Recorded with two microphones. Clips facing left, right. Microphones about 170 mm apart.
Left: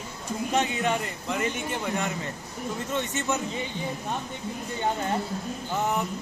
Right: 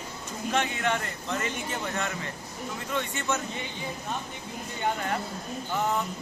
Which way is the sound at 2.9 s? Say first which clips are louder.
Left 1 dB; 20° left (ahead or behind).